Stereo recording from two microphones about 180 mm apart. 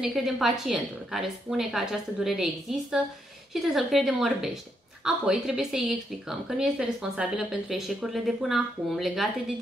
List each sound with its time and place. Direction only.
0.0 s a woman's voice: centre (ahead or behind)